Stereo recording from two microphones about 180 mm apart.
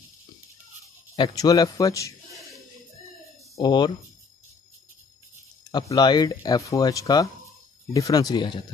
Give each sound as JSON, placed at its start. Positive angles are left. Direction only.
{"t": 1.1, "sound": "speech", "side_deg": 20}
{"t": 3.5, "sound": "speech", "side_deg": 25}
{"t": 5.7, "sound": "speech", "side_deg": 25}